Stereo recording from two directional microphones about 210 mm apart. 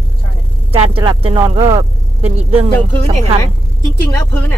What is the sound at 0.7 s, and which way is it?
Speech, 25° right (ahead or behind).